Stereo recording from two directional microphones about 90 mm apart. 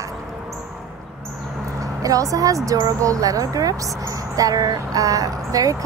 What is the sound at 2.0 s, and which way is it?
A woman's voice, 40° right (ahead or behind).